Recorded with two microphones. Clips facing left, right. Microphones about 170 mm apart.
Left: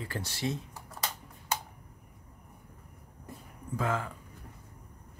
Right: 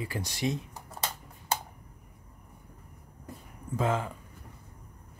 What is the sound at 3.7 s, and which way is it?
Speech, 20° right (ahead or behind).